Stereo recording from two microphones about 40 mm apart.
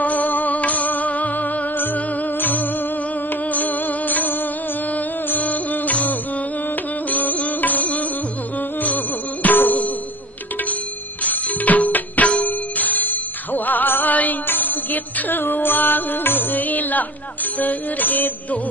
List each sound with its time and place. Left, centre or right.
0.0 s music: left
11.2 s music: left